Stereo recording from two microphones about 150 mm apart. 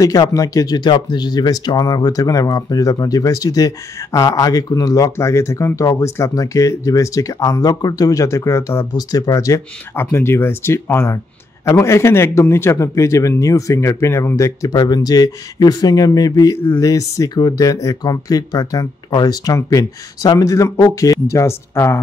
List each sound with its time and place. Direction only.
0.0 s speech: 25° left (ahead or behind)